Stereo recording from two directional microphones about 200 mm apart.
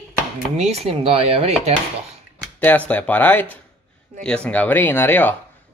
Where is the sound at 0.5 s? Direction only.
30° right (ahead or behind).